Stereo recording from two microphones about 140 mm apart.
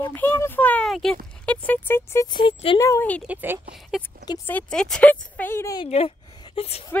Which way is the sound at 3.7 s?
Centre (ahead or behind).